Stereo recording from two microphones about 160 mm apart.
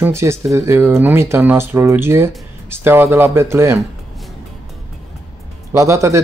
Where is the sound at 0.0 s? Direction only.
15° right (ahead or behind).